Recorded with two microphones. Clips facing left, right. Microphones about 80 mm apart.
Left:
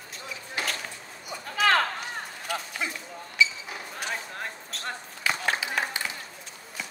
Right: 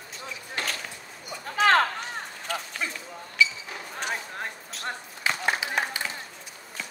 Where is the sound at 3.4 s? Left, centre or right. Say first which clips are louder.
Right 1 dB; left.